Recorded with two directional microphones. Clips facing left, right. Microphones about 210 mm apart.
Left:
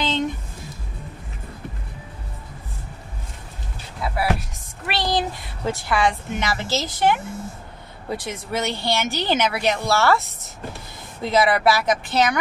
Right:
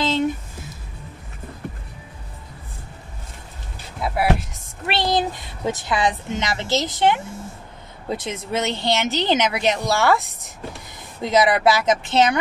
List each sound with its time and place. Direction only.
4.0 s a sound: 20° right (ahead or behind)
5.7 s speech: 20° right (ahead or behind)
11.2 s speech: 20° right (ahead or behind)